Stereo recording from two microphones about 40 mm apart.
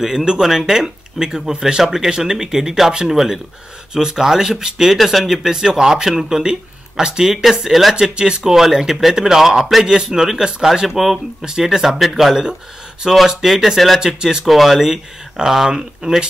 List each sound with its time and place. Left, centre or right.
0.4 s speech: centre
4.9 s speech: centre
7.5 s speech: centre
7.9 s speech: right
11.0 s speech: centre
14.0 s speech: centre
14.4 s speech: centre